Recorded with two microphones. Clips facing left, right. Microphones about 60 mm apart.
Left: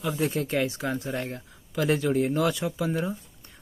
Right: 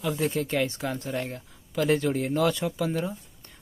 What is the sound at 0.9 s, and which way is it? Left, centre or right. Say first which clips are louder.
Speech: left 2 dB; centre.